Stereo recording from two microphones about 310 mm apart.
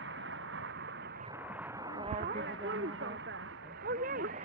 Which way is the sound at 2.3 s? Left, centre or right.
Right.